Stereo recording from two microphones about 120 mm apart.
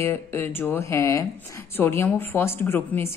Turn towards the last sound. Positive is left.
turn(degrees=20)  # may be behind; listen again after turning